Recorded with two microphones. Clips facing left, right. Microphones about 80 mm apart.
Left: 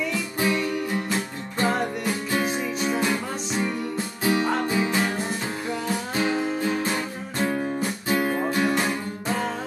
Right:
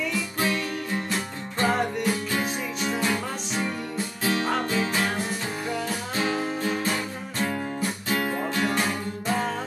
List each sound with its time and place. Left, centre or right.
0.1 s music: left